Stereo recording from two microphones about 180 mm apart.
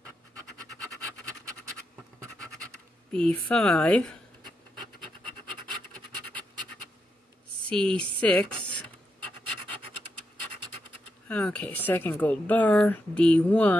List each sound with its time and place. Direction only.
3.1 s a woman's voice: 5° left (ahead or behind)
7.7 s a sound: 5° left (ahead or behind)
11.2 s speech: 5° left (ahead or behind)